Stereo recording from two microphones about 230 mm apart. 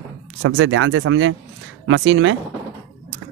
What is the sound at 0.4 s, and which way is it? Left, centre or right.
Speech, right.